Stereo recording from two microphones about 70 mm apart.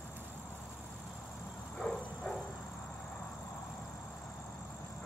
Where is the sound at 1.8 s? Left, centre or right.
Centre.